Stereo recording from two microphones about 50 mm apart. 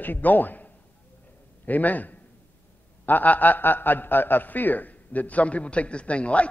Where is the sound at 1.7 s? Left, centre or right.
Left.